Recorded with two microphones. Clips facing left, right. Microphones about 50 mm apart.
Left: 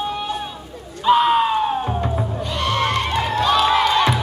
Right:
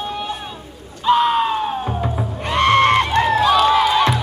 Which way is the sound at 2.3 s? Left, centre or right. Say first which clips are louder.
Right 10 dB; right.